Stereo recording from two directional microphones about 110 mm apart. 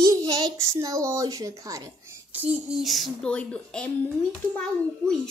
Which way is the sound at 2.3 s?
10° right (ahead or behind).